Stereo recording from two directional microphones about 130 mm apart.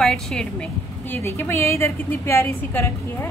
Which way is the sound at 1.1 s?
20° left (ahead or behind).